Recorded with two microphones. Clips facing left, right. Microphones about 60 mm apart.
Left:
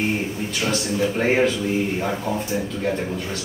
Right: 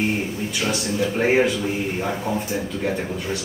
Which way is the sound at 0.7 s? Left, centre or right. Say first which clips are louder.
Left 2 dB; centre.